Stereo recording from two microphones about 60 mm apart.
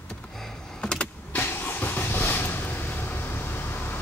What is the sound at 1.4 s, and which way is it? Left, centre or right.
Vehicle, left.